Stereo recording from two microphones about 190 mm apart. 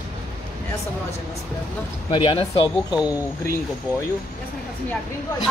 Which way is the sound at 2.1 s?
30° left (ahead or behind).